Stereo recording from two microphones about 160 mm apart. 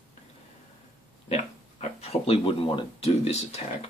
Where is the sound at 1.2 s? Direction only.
45° left (ahead or behind).